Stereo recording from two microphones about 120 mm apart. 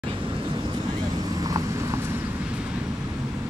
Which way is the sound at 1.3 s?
30° right (ahead or behind).